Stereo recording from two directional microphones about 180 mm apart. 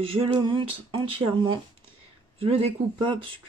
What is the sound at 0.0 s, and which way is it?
Speech, 30° right (ahead or behind).